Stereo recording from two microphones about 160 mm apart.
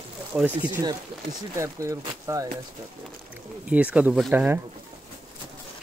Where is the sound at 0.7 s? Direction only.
25° right (ahead or behind).